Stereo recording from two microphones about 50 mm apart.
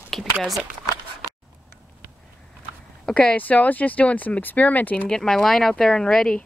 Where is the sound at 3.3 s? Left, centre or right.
Left.